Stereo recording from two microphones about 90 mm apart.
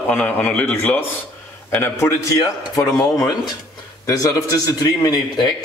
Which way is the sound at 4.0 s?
40° left (ahead or behind).